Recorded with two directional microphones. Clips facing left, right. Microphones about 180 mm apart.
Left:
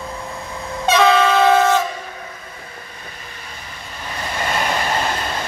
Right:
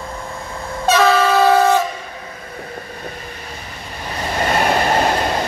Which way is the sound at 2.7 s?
45° right (ahead or behind).